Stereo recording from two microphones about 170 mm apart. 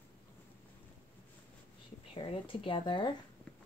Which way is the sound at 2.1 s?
30° left (ahead or behind).